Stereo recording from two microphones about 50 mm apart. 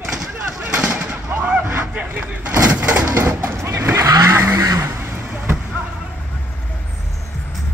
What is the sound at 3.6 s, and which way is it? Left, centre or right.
Vehicle, right.